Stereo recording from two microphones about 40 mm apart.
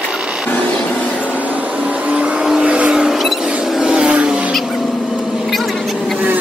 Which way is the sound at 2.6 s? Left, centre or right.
Right.